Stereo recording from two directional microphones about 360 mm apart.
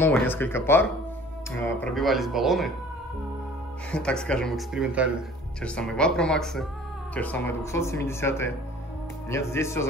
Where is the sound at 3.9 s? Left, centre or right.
Centre.